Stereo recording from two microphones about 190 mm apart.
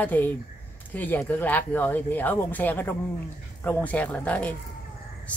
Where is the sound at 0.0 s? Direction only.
10° left (ahead or behind).